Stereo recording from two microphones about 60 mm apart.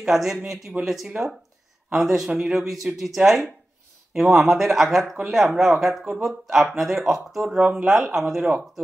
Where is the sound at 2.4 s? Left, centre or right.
Centre.